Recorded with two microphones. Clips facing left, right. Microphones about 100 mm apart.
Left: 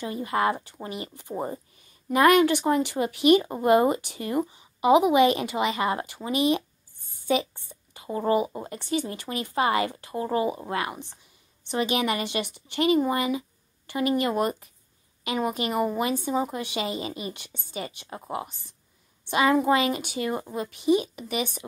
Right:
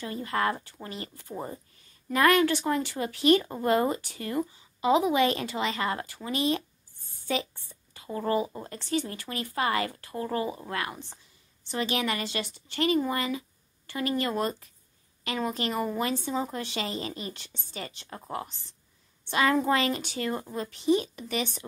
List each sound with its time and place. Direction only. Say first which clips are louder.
0.0 s speech: left 3 dB; 15° left (ahead or behind)